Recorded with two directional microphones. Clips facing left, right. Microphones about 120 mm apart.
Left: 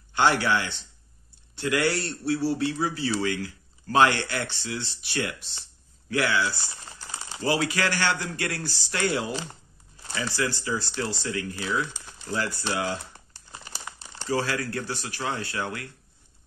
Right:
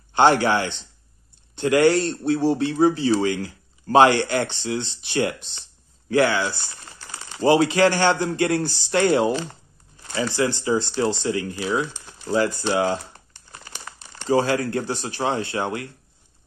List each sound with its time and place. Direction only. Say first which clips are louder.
0.1 s a man's voice: right 6 dB; 25° right (ahead or behind)
14.2 s a man's voice: right 7 dB; 25° right (ahead or behind)